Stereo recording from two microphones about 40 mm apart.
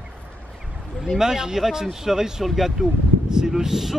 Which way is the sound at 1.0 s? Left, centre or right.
Centre.